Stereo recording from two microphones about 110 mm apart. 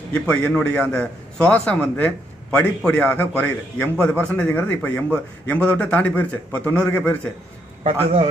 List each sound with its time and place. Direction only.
0.1 s a man's voice: 10° left (ahead or behind)
7.8 s a man's voice: 70° right (ahead or behind)